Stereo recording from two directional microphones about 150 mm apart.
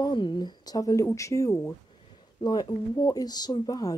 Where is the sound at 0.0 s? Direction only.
30° left (ahead or behind).